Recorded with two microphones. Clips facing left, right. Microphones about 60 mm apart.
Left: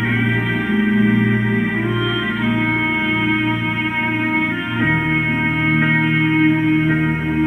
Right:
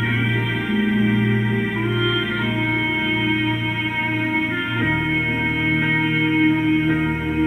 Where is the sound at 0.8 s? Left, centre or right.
Left.